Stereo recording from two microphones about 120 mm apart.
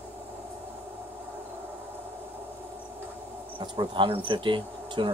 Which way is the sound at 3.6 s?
40° right (ahead or behind).